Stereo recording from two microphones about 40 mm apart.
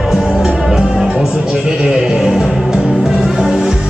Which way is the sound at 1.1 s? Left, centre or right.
Centre.